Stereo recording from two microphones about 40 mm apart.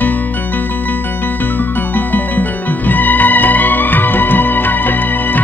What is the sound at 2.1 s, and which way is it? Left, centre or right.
Music, left.